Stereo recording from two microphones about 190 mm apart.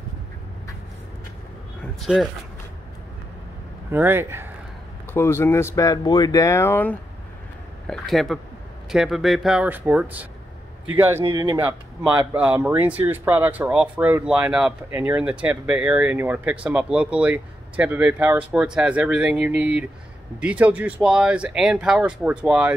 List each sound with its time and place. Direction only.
2.0 s speech: centre (ahead or behind)
3.9 s speech: 10° right (ahead or behind)
5.1 s speech: 10° left (ahead or behind); by 22.8 s 5° right (ahead or behind)